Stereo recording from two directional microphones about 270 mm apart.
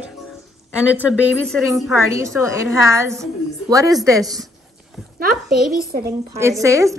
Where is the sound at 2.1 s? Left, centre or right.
Centre.